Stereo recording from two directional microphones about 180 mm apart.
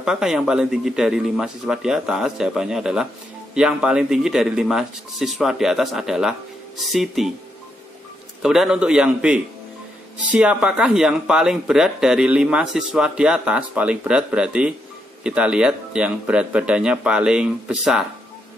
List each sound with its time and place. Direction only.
0.0 s speech: 5° right (ahead or behind)
8.4 s speech: 5° right (ahead or behind)